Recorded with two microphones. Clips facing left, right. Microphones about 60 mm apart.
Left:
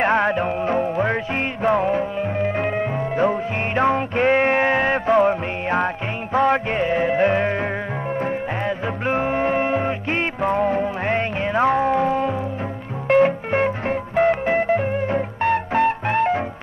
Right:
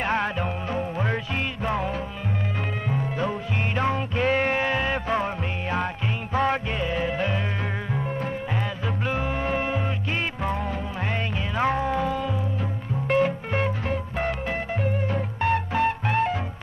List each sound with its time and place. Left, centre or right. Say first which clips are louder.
0.0 s music: left 7 dB; left